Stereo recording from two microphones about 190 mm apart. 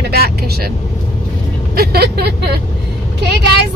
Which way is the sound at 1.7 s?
55° right (ahead or behind).